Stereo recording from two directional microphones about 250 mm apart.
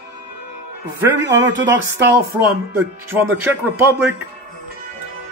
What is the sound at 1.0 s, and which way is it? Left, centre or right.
Speech, centre.